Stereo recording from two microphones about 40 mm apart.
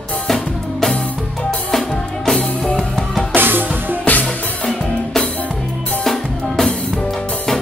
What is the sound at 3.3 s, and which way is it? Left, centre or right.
Music, right.